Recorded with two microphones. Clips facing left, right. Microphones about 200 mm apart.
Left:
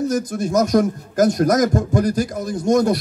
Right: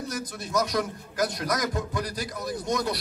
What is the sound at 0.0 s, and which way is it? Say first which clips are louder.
A man's voice: left 13 dB; 45° left (ahead or behind).